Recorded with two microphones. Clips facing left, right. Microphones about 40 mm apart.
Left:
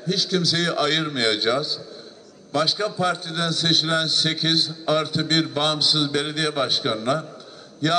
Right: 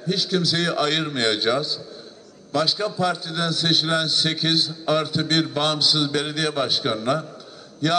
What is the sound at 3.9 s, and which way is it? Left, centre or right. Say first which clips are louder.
A man's voice: even; centre.